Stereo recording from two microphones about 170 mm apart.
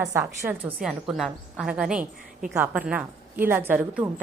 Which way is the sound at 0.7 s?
5° right (ahead or behind).